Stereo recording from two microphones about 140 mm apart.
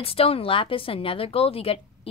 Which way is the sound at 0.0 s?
40° left (ahead or behind).